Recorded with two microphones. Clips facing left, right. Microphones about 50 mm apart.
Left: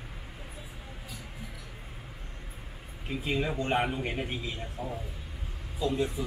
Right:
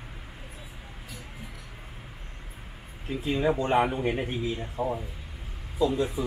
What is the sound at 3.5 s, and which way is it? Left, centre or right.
Speech, right.